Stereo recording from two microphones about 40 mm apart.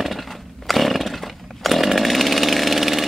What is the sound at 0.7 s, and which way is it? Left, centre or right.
Chainsaw, centre.